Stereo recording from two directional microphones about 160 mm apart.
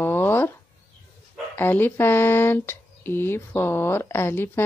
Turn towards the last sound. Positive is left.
turn(degrees=15)  # may be behind; listen again after turning